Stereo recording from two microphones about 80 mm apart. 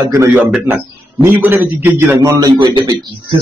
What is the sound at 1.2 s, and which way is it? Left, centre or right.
Speech, right.